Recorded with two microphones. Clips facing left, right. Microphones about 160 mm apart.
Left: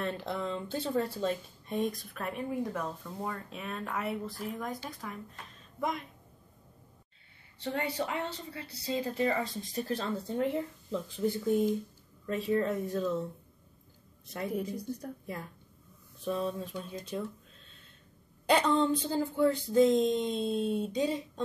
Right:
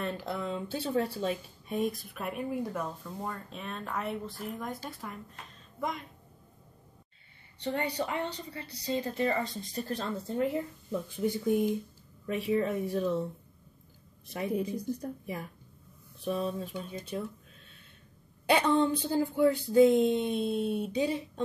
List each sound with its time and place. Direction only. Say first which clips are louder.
0.0 s speech: even; 5° right (ahead or behind)
7.5 s speech: right 1 dB; centre (ahead or behind)
14.2 s speech: right 2 dB; 15° right (ahead or behind)
18.5 s speech: right 1 dB; 5° right (ahead or behind)